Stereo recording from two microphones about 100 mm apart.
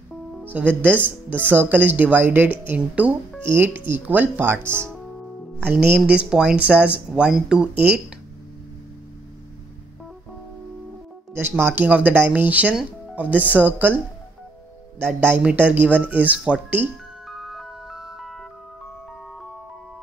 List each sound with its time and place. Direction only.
0.5 s speech: 15° right (ahead or behind)
11.3 s speech: 20° right (ahead or behind)
17.3 s music: centre (ahead or behind)